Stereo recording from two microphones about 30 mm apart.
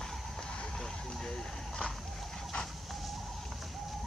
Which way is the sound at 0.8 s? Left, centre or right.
Centre.